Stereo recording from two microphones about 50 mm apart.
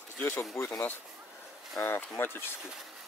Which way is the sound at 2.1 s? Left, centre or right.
Left.